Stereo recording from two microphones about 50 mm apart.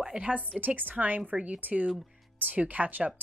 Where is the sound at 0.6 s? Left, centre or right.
Right.